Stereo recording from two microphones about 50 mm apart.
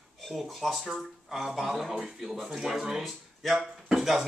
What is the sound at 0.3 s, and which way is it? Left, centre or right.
Speech, centre.